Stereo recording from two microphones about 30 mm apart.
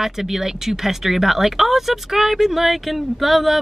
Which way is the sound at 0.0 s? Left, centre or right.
Centre.